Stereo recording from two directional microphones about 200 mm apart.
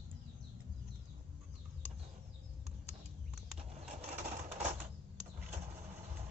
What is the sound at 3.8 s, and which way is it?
Typewriter, 35° right (ahead or behind).